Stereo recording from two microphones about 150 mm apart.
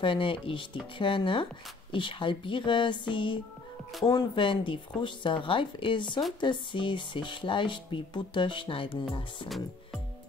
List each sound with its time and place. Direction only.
0.0 s speech: 35° left (ahead or behind)